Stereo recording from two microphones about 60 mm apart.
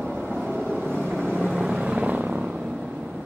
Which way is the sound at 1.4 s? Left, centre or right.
Centre.